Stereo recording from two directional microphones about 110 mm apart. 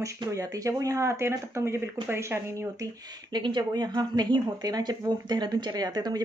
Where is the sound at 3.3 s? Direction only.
45° right (ahead or behind).